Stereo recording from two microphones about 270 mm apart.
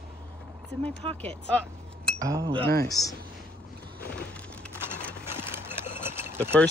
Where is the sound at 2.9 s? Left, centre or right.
Centre.